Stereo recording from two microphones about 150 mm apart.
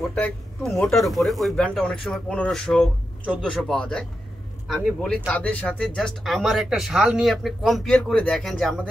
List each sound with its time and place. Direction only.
0.1 s speech: 5° left (ahead or behind)